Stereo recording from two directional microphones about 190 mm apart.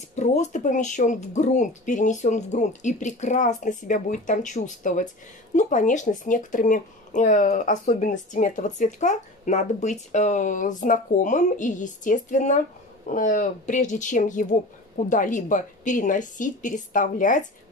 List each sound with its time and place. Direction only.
0.1 s a woman's voice: 35° left (ahead or behind)